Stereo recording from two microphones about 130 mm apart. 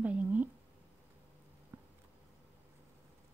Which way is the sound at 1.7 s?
15° right (ahead or behind).